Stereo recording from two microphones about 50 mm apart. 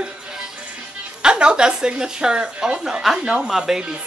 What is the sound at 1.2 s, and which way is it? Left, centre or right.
Speech, centre.